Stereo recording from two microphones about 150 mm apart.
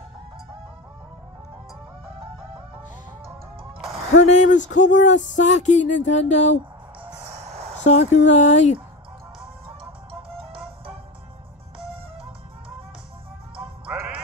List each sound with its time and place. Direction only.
4.2 s speech: 55° left (ahead or behind)
7.2 s music: 45° right (ahead or behind)
7.8 s speech: 50° left (ahead or behind)
10.3 s music: 35° right (ahead or behind)
13.8 s music: 10° right (ahead or behind)